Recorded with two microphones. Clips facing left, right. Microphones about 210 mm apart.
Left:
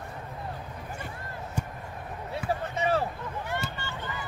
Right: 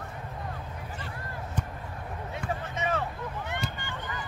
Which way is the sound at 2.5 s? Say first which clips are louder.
Left 4 dB; 35° left (ahead or behind).